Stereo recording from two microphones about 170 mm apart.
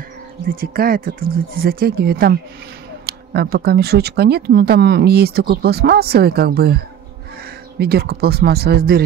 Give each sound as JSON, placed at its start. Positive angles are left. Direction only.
{"t": 0.5, "sound": "speech", "side_deg": -60}
{"t": 7.8, "sound": "speech", "side_deg": -70}